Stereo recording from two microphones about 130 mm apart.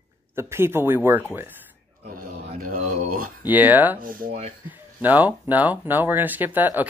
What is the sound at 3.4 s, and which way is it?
Speech, 15° right (ahead or behind).